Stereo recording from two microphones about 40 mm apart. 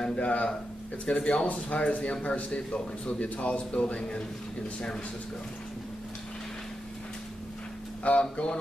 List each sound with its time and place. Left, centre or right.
0.2 s speech: left
8.0 s speech: left